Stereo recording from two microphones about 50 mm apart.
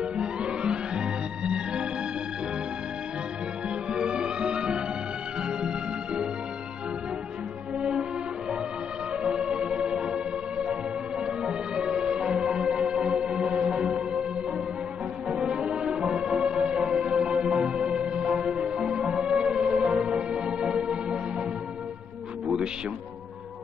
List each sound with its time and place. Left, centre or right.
0.0 s music: centre
3.9 s music: centre
9.2 s music: centre
15.2 s music: centre